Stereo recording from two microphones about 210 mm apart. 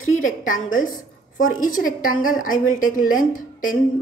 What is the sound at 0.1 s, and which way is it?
A woman's voice, 40° left (ahead or behind).